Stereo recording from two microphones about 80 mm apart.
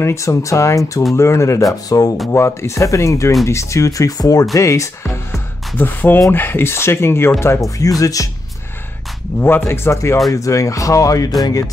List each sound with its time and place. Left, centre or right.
0.0 s speech: left
2.3 s speech: left
5.8 s speech: left
9.4 s speech: left